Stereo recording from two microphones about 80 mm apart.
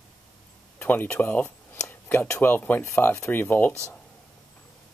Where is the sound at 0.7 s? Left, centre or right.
Left.